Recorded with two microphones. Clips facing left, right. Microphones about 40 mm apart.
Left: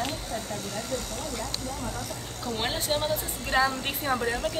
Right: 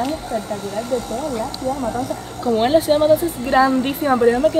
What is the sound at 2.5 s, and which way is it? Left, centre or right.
A woman's voice, centre.